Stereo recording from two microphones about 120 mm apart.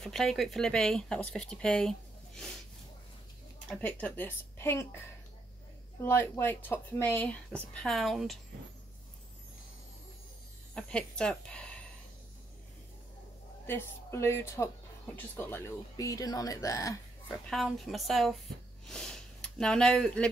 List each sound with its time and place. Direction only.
0.0 s speech: centre (ahead or behind)
3.8 s speech: 15° left (ahead or behind)
6.0 s speech: 20° left (ahead or behind); by 8.4 s centre (ahead or behind)
10.7 s speech: 10° left (ahead or behind)
13.7 s speech: 20° left (ahead or behind)
17.5 s speech: centre (ahead or behind)